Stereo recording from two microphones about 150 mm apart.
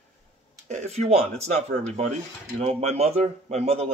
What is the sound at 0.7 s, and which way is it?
Speech, 50° right (ahead or behind).